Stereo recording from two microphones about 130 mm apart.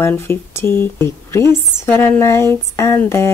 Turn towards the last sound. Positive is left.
turn(degrees=20)  # may be behind; listen again after turning